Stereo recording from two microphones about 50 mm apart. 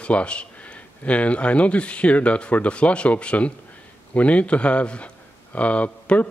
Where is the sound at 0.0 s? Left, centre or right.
Left.